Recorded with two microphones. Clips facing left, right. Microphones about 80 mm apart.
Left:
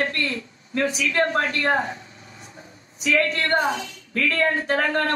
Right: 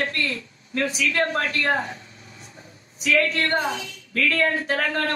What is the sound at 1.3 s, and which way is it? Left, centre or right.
A woman's voice, left.